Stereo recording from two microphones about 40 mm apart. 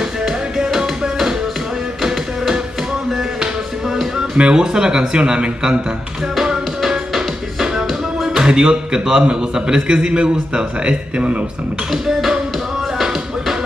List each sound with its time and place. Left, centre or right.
0.2 s music: centre
4.4 s a man's voice: right
6.9 s music: centre
8.5 s a man's voice: right
11.9 s music: centre